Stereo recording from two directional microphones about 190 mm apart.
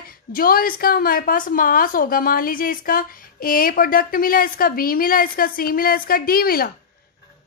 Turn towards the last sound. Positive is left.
turn(degrees=50)  # may be behind; listen again after turning